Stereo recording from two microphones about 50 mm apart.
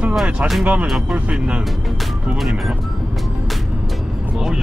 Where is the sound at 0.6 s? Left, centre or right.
Right.